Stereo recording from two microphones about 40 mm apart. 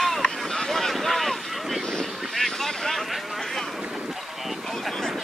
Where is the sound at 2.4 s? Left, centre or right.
Centre.